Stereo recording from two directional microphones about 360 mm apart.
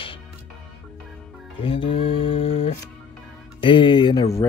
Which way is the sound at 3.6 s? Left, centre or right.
Centre.